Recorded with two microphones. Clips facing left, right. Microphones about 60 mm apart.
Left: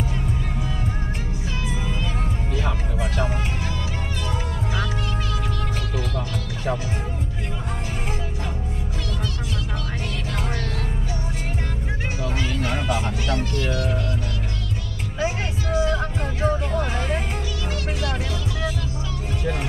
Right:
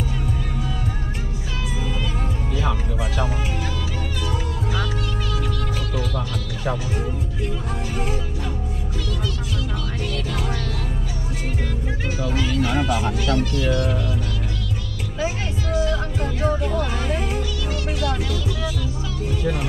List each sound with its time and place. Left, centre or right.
12.6 s music: centre
15.1 s music: centre
16.4 s music: centre